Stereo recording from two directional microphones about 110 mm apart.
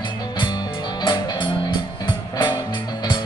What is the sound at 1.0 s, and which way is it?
Music, 45° left (ahead or behind).